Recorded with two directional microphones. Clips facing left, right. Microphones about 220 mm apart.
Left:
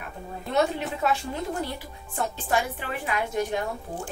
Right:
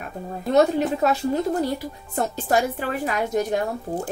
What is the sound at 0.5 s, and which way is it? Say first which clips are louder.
A woman's voice: right 7 dB; 40° right (ahead or behind).